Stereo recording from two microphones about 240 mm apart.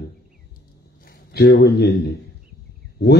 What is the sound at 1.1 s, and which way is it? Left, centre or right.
Speech, left.